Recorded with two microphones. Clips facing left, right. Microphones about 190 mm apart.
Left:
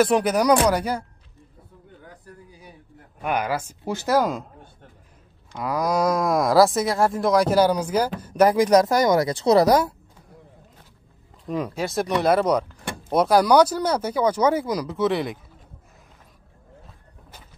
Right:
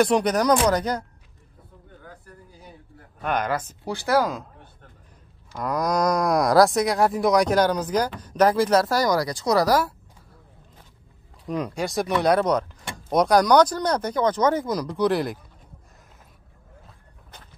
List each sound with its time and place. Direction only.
0.0 s speech: 5° left (ahead or behind)
3.2 s speech: 10° left (ahead or behind)
3.8 s speech: 20° left (ahead or behind)
5.6 s cattle: 5° left (ahead or behind)
8.2 s speech: 10° left (ahead or behind)
11.4 s cattle: centre (ahead or behind)
13.1 s speech: 5° left (ahead or behind)